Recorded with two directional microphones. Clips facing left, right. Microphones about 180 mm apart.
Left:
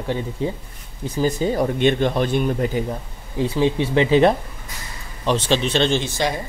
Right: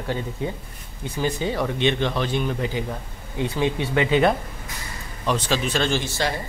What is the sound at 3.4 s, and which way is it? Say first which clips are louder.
Speech: left 4 dB; 30° left (ahead or behind).